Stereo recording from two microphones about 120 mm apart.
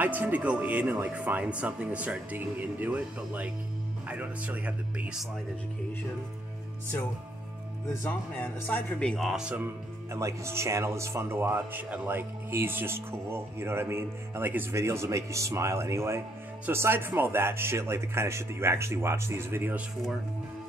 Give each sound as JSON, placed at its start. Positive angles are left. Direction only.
{"t": 0.0, "sound": "speech", "side_deg": -15}
{"t": 8.4, "sound": "speech", "side_deg": 10}
{"t": 9.3, "sound": "speech", "side_deg": -5}
{"t": 10.1, "sound": "speech", "side_deg": -25}